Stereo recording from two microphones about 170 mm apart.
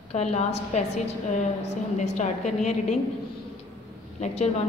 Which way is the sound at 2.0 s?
40° left (ahead or behind).